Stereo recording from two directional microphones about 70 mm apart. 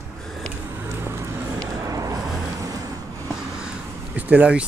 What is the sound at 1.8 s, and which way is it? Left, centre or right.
Vehicle, right.